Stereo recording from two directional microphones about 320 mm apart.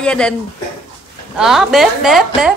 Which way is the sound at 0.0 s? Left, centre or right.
Centre.